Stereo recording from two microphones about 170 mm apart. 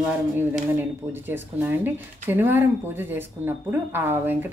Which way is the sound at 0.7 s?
10° right (ahead or behind).